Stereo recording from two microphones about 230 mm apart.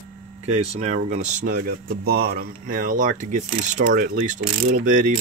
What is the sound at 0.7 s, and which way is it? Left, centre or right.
Speech, right.